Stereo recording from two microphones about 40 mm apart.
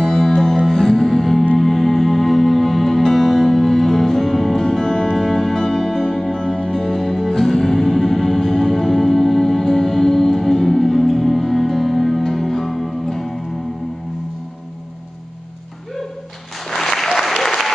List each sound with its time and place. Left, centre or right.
0.0 s music: centre
16.6 s applause: centre